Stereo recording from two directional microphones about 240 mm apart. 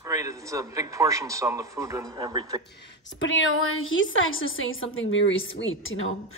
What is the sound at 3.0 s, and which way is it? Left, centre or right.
A woman's voice, left.